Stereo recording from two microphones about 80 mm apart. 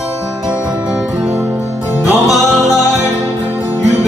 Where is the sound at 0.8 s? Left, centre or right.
Centre.